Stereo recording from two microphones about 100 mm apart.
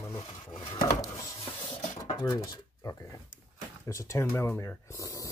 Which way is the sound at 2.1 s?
45° left (ahead or behind).